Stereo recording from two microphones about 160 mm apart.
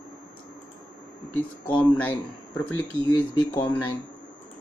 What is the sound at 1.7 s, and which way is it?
Speech, 10° left (ahead or behind).